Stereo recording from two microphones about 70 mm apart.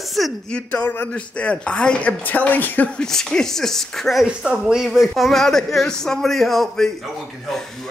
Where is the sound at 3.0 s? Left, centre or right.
Centre.